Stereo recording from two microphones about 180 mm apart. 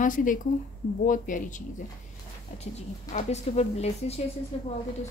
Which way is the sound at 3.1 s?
40° left (ahead or behind).